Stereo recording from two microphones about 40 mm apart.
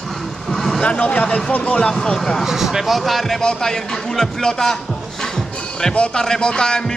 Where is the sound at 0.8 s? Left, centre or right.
Left.